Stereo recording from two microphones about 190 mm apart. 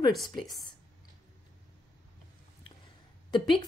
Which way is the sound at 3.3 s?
25° left (ahead or behind).